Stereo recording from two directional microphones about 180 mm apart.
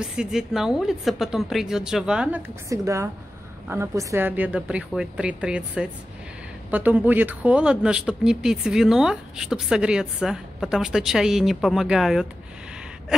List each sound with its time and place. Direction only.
0.1 s speech: 5° right (ahead or behind)
2.7 s speech: 15° right (ahead or behind); by 12.3 s centre (ahead or behind)